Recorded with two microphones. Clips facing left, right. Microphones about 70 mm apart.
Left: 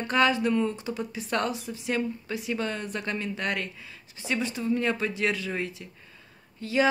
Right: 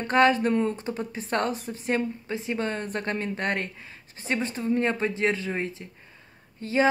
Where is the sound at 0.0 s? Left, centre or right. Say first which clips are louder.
Right 3 dB; right.